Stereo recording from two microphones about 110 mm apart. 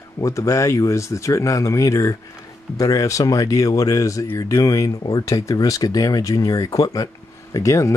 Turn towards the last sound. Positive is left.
turn(degrees=30)  # may be behind; listen again after turning